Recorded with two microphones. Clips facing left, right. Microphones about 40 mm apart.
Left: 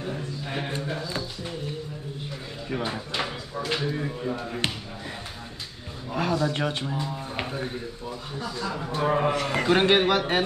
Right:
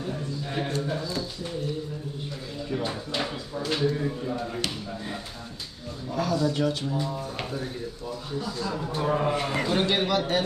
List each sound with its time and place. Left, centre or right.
0.0 s a sound: left
2.8 s speech: centre
6.1 s speech: left
9.7 s a man's voice: left